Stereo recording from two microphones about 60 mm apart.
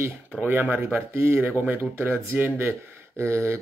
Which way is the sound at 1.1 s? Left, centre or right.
Right.